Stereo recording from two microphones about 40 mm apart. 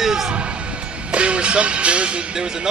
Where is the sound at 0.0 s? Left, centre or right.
Centre.